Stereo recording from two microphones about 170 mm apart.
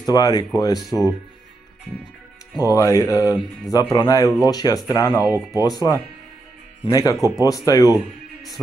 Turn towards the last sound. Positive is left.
turn(degrees=20)  # may be behind; listen again after turning